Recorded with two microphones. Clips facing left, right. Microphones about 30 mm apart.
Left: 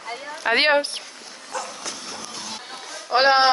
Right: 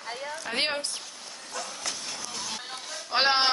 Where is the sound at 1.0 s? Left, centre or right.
Left.